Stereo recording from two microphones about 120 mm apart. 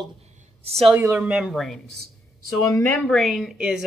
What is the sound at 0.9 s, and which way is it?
Speech, 20° right (ahead or behind).